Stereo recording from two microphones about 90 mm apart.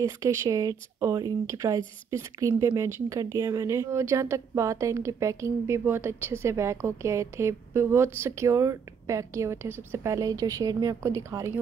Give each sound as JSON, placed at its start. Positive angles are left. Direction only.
{"t": 0.0, "sound": "speech", "side_deg": -40}
{"t": 11.0, "sound": "speech", "side_deg": -35}